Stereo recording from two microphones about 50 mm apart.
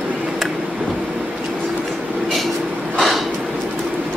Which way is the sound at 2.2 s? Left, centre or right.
Centre.